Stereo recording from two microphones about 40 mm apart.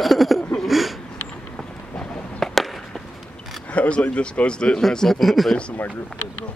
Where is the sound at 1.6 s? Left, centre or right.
Centre.